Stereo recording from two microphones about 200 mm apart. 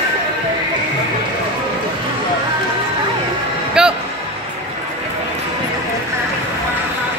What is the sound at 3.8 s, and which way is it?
Music, 5° right (ahead or behind).